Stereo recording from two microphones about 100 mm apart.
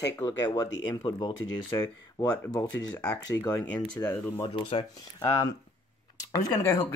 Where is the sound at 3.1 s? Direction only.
40° left (ahead or behind).